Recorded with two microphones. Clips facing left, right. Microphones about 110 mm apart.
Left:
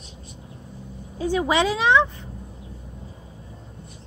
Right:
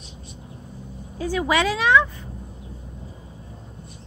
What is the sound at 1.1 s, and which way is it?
Speech, 20° left (ahead or behind).